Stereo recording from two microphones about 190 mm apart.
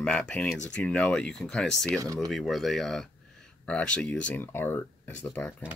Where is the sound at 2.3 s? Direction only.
Centre (ahead or behind).